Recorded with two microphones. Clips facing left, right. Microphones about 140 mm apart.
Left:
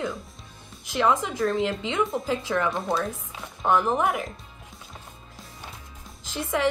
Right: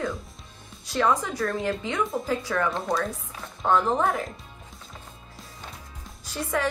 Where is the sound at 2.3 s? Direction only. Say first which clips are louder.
Left 1 dB; 20° left (ahead or behind).